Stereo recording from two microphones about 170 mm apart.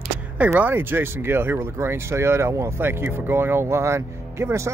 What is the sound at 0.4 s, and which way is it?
Speech, 10° right (ahead or behind).